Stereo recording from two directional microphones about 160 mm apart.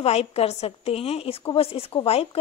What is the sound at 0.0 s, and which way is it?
Speech, 40° left (ahead or behind).